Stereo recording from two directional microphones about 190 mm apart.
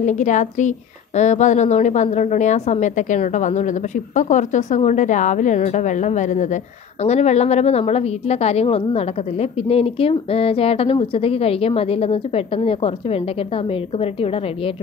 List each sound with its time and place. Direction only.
0.0 s a woman's voice: 40° left (ahead or behind)